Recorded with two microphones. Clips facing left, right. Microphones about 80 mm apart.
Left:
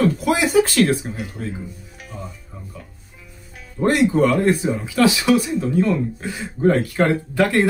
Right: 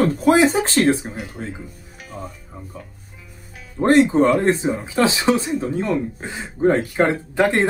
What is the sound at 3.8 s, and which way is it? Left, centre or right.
Speech, right.